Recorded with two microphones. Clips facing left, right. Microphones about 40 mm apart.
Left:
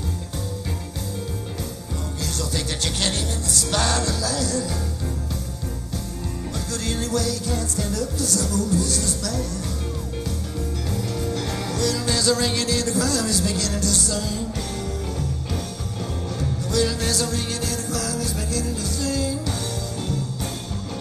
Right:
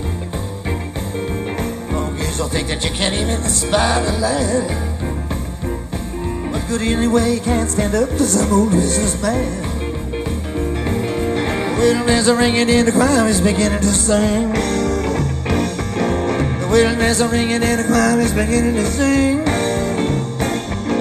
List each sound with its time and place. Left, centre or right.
2.5 s music: right
6.7 s music: right
10.6 s music: right